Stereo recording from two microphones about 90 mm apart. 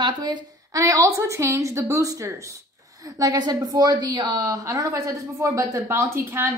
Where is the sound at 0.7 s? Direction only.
40° right (ahead or behind).